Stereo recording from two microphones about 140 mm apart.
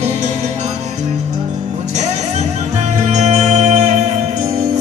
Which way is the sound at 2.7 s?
55° right (ahead or behind).